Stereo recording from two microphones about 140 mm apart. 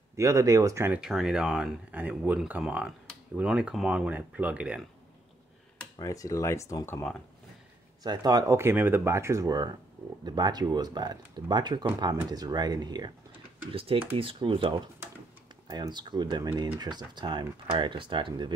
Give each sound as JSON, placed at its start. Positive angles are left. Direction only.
{"t": 0.1, "sound": "speech", "side_deg": -20}
{"t": 1.0, "sound": "speech", "side_deg": -5}
{"t": 5.9, "sound": "speech", "side_deg": 25}
{"t": 8.0, "sound": "speech", "side_deg": -30}
{"t": 13.7, "sound": "speech", "side_deg": -40}
{"t": 15.7, "sound": "speech", "side_deg": -30}